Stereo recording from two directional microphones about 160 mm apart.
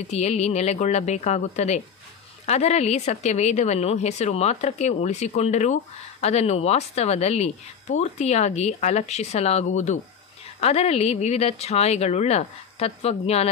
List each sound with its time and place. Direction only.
0.1 s speech: 45° left (ahead or behind)